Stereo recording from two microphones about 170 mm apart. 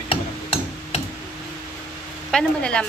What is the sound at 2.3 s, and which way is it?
Speech, 5° left (ahead or behind).